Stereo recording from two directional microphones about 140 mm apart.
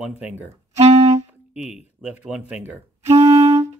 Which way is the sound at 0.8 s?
50° right (ahead or behind).